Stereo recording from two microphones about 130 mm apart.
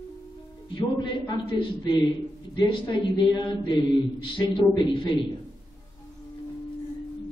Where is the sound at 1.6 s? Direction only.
40° left (ahead or behind).